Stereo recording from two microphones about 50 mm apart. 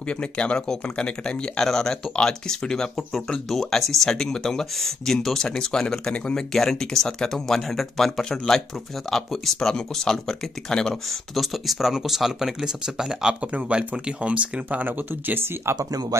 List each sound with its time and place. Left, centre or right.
0.1 s speech: left
11.1 s speech: centre; by 15.7 s right
15.7 s speech: right